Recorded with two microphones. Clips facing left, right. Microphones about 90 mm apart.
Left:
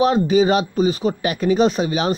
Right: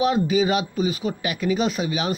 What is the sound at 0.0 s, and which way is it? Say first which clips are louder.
Speech: left 5 dB; 35° left (ahead or behind).